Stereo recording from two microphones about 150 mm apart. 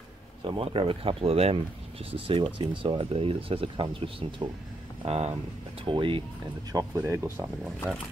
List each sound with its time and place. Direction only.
0.6 s speech: 40° right (ahead or behind)
6.7 s speech: 20° right (ahead or behind)